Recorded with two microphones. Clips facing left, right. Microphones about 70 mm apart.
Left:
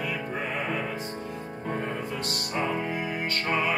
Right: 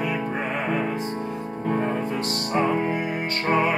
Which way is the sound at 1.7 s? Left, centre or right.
Right.